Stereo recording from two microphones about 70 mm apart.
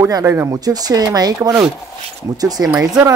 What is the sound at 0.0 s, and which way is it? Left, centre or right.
Speech, right.